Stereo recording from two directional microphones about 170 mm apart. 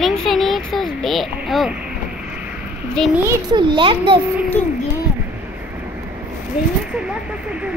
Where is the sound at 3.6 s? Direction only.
30° right (ahead or behind).